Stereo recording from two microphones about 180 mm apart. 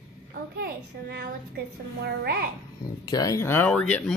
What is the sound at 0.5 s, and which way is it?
Speech, 65° right (ahead or behind).